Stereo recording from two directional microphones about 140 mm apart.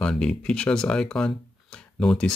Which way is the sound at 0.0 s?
5° left (ahead or behind).